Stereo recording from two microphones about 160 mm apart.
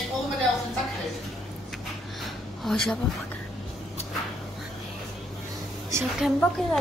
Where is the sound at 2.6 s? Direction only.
5° left (ahead or behind).